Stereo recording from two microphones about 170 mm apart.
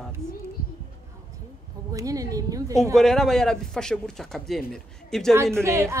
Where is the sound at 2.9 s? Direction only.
Centre (ahead or behind).